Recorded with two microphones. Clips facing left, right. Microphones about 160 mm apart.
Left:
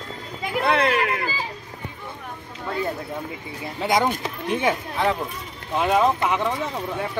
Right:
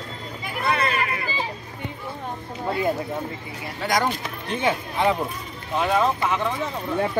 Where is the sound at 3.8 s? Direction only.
25° left (ahead or behind).